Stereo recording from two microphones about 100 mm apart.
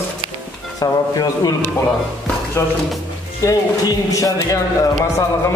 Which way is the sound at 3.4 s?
35° left (ahead or behind).